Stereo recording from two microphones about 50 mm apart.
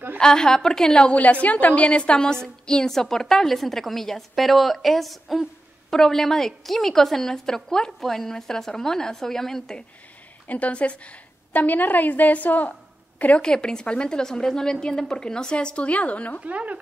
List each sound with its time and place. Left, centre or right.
0.2 s a woman's voice: centre
1.1 s a woman's voice: left; by 9.8 s centre
10.4 s a woman's voice: left
13.4 s a woman's voice: centre
16.4 s speech: right